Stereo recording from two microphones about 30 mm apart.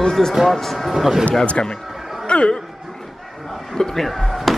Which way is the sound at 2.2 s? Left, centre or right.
Left.